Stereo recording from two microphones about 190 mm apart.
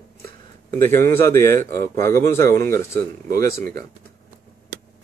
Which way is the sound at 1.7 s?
15° left (ahead or behind).